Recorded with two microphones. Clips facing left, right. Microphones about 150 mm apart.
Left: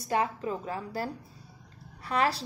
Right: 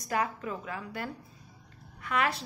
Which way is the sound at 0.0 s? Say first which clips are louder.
Left 3 dB; 30° left (ahead or behind).